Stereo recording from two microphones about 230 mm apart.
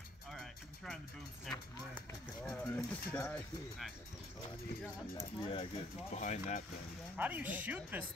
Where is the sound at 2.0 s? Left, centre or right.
Centre.